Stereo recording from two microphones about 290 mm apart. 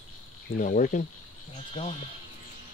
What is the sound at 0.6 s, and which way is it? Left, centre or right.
Speech, left.